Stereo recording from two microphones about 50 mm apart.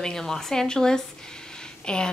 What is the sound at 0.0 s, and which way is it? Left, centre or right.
A woman's voice, centre.